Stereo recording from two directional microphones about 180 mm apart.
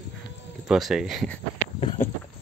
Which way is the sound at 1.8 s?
30° left (ahead or behind).